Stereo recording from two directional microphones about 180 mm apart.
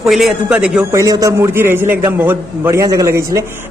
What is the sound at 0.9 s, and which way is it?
A man's voice, 20° right (ahead or behind).